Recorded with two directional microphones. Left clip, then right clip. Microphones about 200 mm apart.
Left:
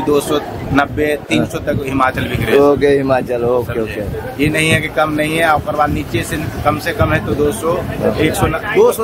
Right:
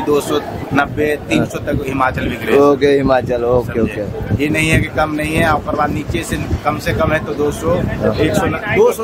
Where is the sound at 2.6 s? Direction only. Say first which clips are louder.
Right 1 dB; 10° right (ahead or behind).